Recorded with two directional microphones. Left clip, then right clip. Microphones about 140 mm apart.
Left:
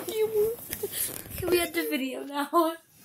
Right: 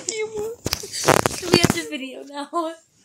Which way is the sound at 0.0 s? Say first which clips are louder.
Right 1 dB; 15° right (ahead or behind).